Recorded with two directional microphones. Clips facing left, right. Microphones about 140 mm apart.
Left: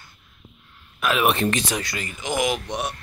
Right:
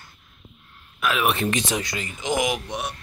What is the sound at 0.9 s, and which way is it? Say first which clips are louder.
Speech: left 2 dB; centre (ahead or behind).